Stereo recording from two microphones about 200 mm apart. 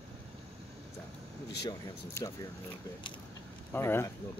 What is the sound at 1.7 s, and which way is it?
Speech, 15° left (ahead or behind).